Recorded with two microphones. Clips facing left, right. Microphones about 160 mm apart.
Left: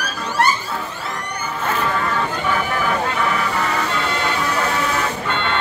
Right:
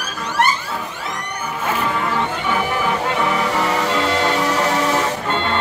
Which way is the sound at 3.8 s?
90° right.